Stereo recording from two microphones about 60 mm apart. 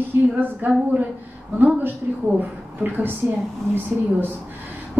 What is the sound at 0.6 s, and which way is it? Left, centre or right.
Speech, right.